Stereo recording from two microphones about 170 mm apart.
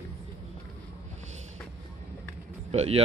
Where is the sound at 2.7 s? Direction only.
40° right (ahead or behind).